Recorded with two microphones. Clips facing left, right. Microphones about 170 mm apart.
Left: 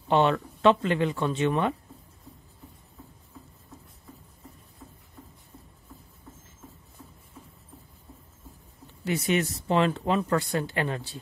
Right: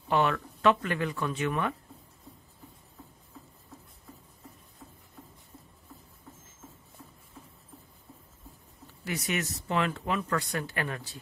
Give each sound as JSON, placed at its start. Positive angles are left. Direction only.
{"t": 0.1, "sound": "speech", "side_deg": 25}
{"t": 9.0, "sound": "speech", "side_deg": 25}